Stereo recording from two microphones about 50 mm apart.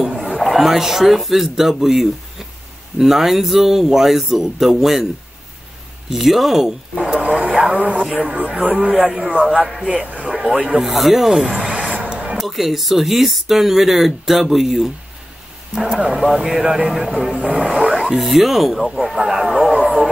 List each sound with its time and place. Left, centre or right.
0.4 s speech: centre
6.1 s speech: centre
7.2 s radio: right
7.7 s a man's voice: right
10.8 s speech: centre
11.5 s a sound: right
12.4 s speech: centre
15.7 s speech: centre
17.5 s a sound: centre
18.1 s speech: centre